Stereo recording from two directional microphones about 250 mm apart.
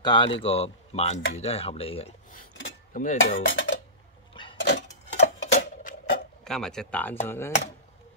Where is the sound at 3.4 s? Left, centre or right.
Left.